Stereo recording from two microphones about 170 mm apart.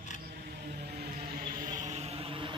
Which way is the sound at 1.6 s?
45° right (ahead or behind).